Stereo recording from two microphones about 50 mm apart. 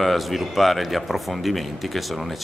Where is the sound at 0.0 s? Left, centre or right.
Centre.